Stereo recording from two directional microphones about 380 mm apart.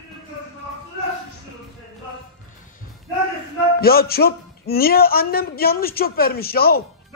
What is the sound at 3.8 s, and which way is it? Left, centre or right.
A man's voice, left.